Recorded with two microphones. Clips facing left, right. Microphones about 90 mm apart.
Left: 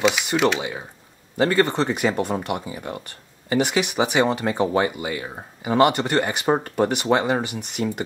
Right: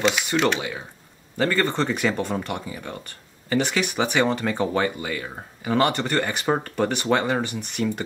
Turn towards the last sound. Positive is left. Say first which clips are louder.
# left 1 dB
turn(degrees=5)  # may be behind; listen again after turning